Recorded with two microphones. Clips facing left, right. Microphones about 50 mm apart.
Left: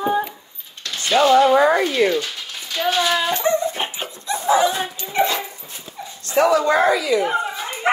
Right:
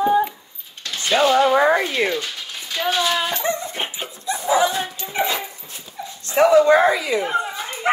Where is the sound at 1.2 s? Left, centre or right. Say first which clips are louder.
Left 2 dB; centre.